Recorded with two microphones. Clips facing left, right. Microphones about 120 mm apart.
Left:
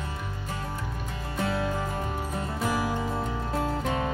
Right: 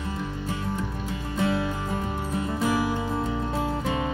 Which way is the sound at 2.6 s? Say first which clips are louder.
Right 2 dB; 5° right (ahead or behind).